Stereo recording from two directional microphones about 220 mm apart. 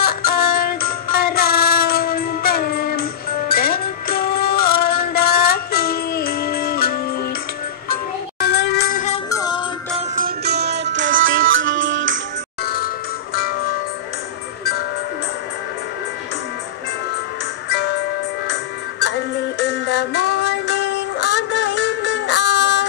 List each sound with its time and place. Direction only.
0.0 s child singing: 45° left (ahead or behind)
8.4 s music: 50° left (ahead or behind)
9.3 s music: 20° left (ahead or behind)
9.9 s music: 40° right (ahead or behind); by 12.2 s 60° right (ahead or behind)
12.6 s music: 45° left (ahead or behind)
17.6 s music: 50° left (ahead or behind)